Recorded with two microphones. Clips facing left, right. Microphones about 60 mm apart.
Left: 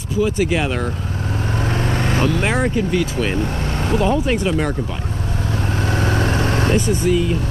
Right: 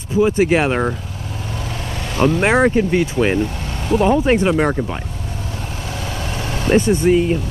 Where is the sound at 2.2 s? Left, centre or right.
Right.